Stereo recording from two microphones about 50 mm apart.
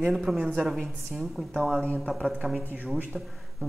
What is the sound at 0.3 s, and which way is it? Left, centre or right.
Speech, centre.